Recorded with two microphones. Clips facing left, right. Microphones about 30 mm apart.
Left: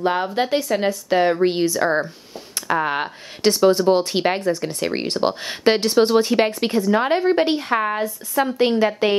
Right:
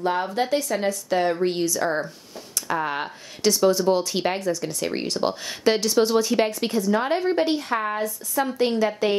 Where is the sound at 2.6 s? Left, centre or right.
Left.